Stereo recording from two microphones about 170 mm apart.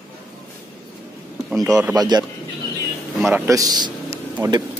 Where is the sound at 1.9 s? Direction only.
25° right (ahead or behind).